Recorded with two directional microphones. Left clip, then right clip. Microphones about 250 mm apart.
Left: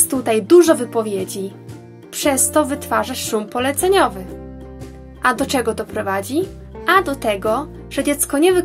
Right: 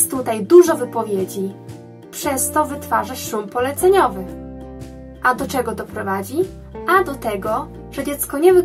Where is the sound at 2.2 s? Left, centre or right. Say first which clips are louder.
Left 2 dB; left.